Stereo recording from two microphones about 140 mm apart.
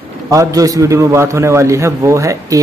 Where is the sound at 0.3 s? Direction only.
25° right (ahead or behind).